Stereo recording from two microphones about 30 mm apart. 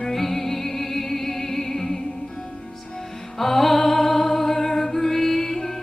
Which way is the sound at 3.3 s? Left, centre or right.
Centre.